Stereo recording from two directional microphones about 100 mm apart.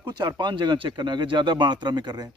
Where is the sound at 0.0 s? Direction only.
50° right (ahead or behind).